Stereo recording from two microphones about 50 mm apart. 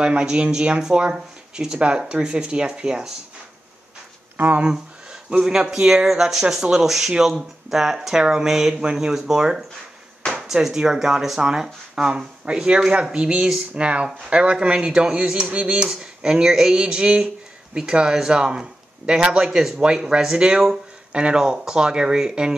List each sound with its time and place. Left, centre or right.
0.0 s speech: centre
4.4 s speech: right
5.4 s speech: centre